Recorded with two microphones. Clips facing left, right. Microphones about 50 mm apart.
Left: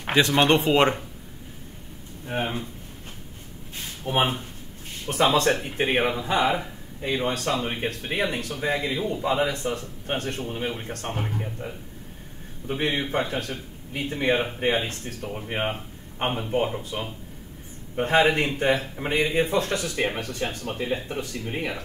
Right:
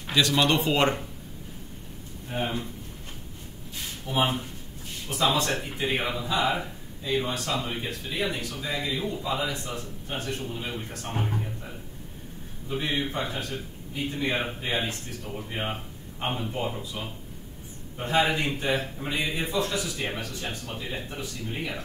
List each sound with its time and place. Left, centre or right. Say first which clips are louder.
0.0 s speech: left 3 dB; left
0.7 s speech: left 4 dB; left
2.3 s speech: left 3 dB; left
4.0 s speech: left 2 dB; left
11.3 s speech: left 2 dB; left
12.6 s speech: left 3 dB; left